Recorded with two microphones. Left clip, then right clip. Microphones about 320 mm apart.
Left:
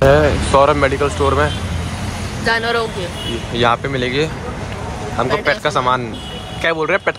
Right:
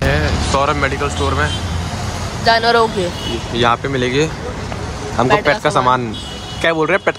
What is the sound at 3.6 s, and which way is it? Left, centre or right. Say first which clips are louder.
Speech: right 1 dB; centre.